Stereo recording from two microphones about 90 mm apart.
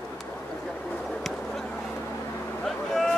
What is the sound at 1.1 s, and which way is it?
Speech, centre (ahead or behind).